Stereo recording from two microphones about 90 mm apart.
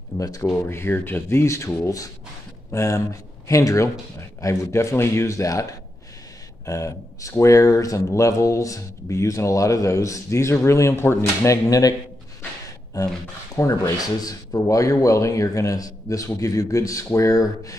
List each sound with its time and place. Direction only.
0.2 s speech: 40° left (ahead or behind)
0.6 s speech: 25° left (ahead or behind)
2.7 s speech: 35° left (ahead or behind)
12.9 s speech: 45° left (ahead or behind)